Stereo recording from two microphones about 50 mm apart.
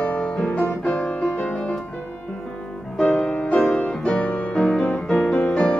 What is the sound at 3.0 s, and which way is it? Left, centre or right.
Music, centre.